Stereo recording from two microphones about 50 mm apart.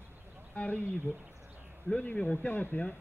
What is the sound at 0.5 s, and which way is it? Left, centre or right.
Speech, left.